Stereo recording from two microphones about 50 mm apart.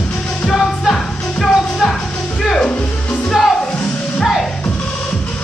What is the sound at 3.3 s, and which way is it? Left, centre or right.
Music, centre.